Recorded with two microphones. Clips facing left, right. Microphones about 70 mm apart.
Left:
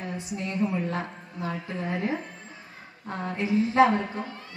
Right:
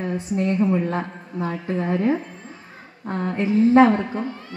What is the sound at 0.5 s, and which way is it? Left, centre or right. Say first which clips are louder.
A woman's voice: right 6 dB; right.